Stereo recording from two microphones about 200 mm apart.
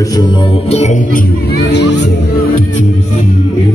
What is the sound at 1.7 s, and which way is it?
Speech, 60° left (ahead or behind).